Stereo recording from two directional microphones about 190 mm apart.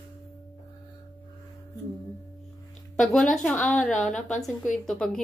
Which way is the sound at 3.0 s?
Centre (ahead or behind).